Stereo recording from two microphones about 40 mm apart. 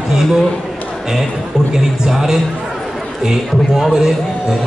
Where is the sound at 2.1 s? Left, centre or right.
Centre.